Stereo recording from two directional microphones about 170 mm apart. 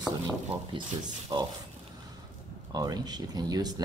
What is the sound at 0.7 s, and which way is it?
Speech, 30° right (ahead or behind).